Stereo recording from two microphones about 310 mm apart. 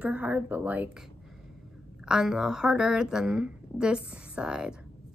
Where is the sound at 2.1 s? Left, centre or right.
Centre.